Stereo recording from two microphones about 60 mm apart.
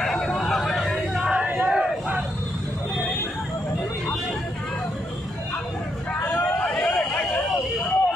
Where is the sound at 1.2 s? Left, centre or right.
Centre.